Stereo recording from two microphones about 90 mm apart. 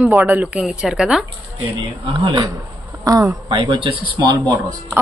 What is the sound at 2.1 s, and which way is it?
Speech, 75° right (ahead or behind).